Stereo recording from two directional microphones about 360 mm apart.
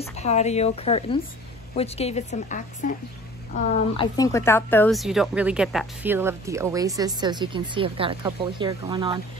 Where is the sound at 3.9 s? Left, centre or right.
Centre.